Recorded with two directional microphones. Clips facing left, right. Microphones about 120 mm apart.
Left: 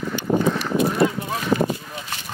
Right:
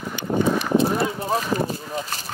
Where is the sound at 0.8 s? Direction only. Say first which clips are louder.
Left 1 dB; 35° right (ahead or behind).